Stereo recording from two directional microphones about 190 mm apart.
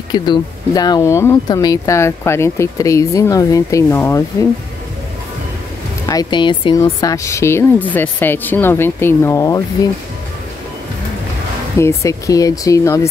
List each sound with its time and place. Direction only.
0.1 s speech: 25° left (ahead or behind)
6.0 s speech: 20° left (ahead or behind)
11.8 s speech: 15° left (ahead or behind)